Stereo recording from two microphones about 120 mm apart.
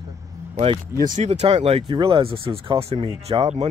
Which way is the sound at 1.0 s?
80° right.